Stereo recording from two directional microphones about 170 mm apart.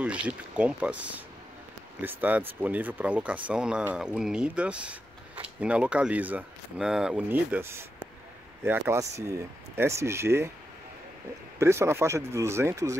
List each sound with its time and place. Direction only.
0.0 s speech: 5° right (ahead or behind)
11.6 s speech: 15° right (ahead or behind)